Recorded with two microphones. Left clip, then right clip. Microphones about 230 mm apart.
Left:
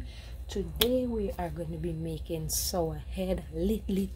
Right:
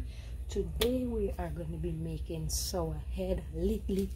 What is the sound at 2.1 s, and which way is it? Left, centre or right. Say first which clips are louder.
A woman's voice: left 5 dB; left.